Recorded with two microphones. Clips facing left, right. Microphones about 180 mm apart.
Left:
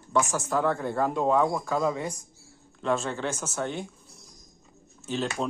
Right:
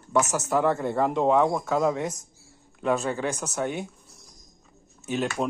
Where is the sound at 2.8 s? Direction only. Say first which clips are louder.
Right 2 dB; 5° right (ahead or behind).